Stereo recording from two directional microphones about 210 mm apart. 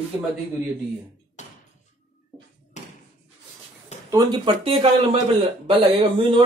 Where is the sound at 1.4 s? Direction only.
35° left (ahead or behind).